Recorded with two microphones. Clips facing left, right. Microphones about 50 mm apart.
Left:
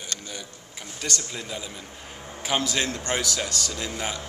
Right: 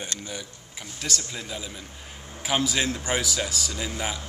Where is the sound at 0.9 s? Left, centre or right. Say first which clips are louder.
Left 1 dB; centre.